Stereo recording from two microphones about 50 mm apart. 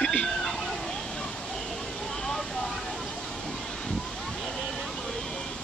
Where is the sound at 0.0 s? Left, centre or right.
Left.